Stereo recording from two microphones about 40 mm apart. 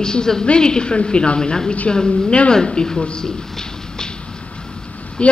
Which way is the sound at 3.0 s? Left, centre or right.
Centre.